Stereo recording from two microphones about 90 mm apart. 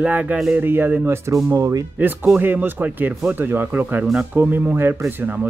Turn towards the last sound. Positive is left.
turn(degrees=-20)  # may be behind; listen again after turning